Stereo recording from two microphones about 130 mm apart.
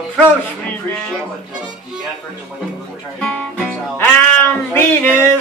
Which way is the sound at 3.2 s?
10° left (ahead or behind).